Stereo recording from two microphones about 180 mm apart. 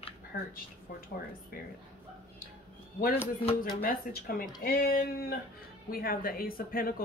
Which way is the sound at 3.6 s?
55° left (ahead or behind).